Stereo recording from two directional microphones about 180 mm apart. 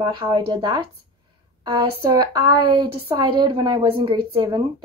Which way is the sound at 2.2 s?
25° right (ahead or behind).